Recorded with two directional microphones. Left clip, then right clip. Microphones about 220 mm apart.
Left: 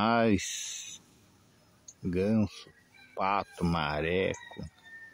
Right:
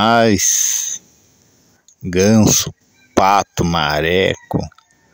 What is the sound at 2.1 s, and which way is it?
Speech, 40° right (ahead or behind).